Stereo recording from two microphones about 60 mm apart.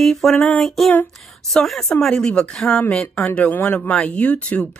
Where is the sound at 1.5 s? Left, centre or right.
Centre.